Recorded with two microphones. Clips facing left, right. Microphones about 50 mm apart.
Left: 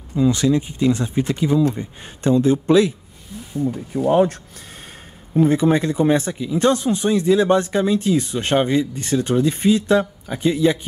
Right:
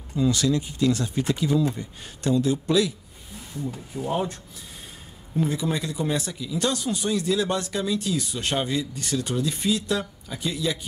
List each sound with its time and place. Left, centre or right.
0.1 s speech: left
3.9 s speech: left
5.3 s speech: left